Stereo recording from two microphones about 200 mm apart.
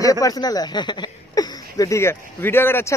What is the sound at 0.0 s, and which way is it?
A woman's voice, 15° left (ahead or behind).